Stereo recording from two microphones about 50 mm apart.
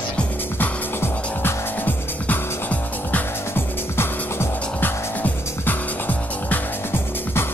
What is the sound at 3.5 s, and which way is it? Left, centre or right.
Music, left.